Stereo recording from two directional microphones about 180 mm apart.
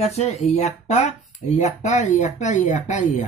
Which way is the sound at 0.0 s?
40° left (ahead or behind).